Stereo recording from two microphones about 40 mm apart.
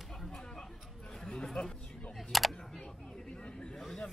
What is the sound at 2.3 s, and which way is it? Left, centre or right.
Speech, centre.